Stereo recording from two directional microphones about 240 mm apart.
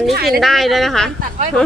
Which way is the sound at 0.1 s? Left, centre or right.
Right.